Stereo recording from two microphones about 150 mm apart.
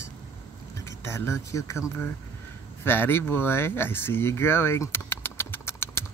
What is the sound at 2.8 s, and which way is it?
Speech, 15° left (ahead or behind).